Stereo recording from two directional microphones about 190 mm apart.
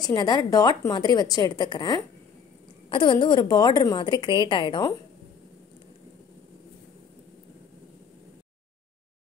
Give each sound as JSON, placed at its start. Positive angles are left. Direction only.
{"t": 0.0, "sound": "a woman's voice", "side_deg": 20}